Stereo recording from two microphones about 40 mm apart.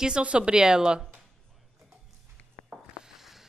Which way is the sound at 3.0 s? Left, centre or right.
Centre.